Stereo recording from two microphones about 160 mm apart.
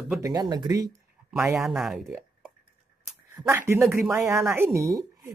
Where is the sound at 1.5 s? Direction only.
Centre (ahead or behind).